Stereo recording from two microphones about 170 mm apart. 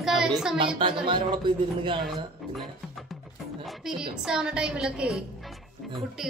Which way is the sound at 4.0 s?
5° right (ahead or behind).